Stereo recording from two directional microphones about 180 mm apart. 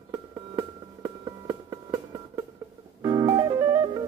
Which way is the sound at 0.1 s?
25° right (ahead or behind).